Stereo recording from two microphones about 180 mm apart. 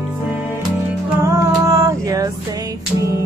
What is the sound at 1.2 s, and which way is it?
Music, 15° right (ahead or behind).